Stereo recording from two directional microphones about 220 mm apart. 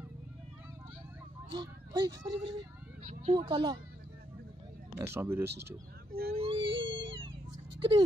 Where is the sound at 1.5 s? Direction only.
20° right (ahead or behind).